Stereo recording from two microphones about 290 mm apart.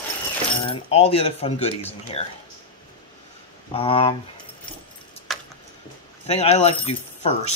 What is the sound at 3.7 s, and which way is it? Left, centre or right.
Speech, centre.